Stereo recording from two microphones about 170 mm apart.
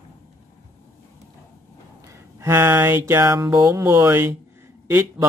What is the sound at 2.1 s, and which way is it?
Speech, 15° right (ahead or behind).